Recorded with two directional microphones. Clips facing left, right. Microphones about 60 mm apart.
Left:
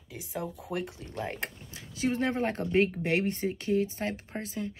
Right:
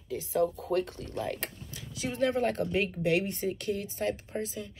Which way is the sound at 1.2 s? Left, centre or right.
Left.